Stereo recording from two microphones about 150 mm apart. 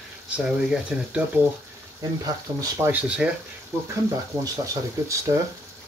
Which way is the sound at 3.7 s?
20° right (ahead or behind).